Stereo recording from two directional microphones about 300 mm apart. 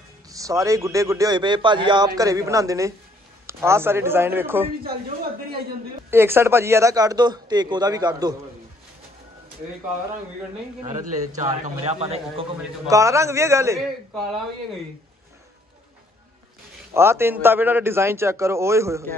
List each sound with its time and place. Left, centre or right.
0.3 s a man's voice: centre
6.0 s a man's voice: centre
10.8 s a man's voice: right; by 14.4 s centre
16.9 s a man's voice: centre